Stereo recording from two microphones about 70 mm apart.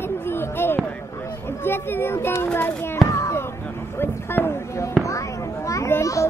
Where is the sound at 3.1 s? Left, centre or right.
Left.